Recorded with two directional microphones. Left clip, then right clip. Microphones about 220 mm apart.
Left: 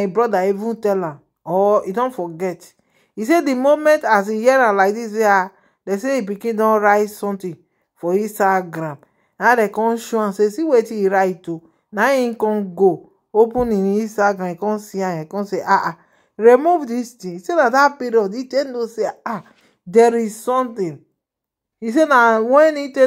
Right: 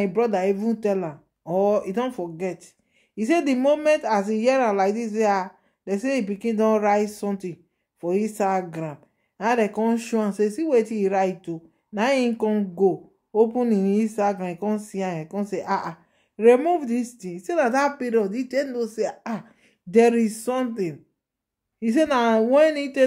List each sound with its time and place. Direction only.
0.1 s speech: 15° left (ahead or behind)